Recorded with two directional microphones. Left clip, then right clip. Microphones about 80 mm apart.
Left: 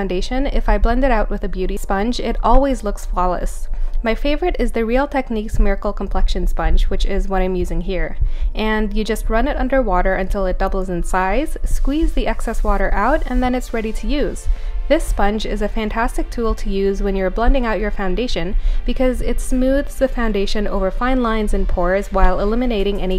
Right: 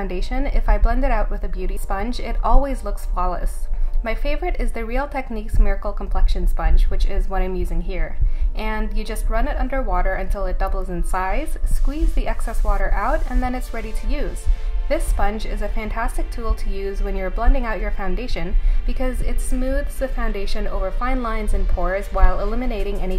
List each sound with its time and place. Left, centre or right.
0.1 s a woman's voice: left
12.4 s a woman's voice: left
12.8 s a woman's voice: left
20.6 s speech: centre
21.0 s a woman's voice: left
21.5 s speech: centre
22.4 s a woman's voice: left